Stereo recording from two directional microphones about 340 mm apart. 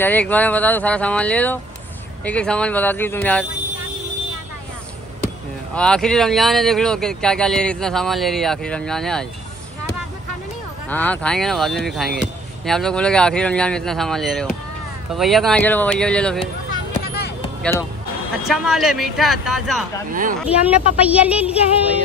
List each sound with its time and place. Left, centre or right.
0.0 s speech: centre
5.8 s speech: centre
10.9 s speech: centre
18.5 s speech: centre
20.1 s a woman's voice: right
20.3 s speech: centre